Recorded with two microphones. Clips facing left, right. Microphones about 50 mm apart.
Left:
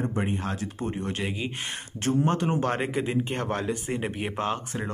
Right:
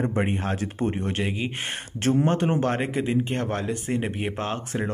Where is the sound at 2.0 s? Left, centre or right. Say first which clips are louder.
Right 3 dB; right.